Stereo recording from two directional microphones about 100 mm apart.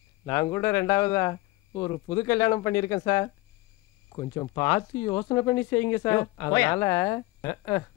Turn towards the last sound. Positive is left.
turn(degrees=30)  # may be behind; listen again after turning